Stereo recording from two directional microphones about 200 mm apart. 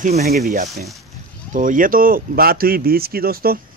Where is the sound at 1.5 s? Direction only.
40° right (ahead or behind).